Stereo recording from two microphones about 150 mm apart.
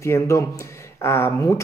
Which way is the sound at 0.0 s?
20° left (ahead or behind).